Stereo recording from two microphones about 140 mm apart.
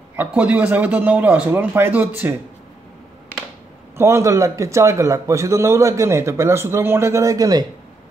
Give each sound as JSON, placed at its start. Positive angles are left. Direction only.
{"t": 0.1, "sound": "a man's voice", "side_deg": -10}
{"t": 4.0, "sound": "a man's voice", "side_deg": -20}